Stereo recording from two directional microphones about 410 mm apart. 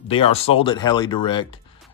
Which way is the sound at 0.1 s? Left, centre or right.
Centre.